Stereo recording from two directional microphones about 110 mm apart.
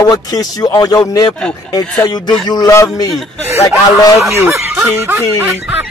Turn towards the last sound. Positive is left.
turn(degrees=-20)  # may be behind; listen again after turning